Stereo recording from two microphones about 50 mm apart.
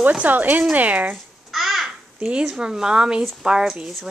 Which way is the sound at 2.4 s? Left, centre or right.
Centre.